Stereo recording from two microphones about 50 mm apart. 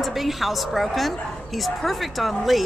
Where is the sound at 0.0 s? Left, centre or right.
Centre.